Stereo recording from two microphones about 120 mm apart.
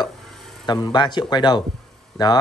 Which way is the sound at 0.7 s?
35° left (ahead or behind).